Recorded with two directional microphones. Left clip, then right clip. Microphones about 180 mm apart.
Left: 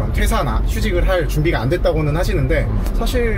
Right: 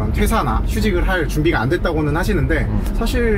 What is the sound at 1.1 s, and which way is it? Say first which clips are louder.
Speech: even; 20° right (ahead or behind).